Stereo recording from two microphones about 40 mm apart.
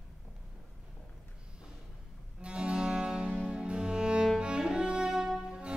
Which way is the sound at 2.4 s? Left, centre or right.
Right.